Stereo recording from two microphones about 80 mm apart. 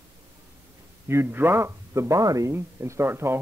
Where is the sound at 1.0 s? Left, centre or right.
Right.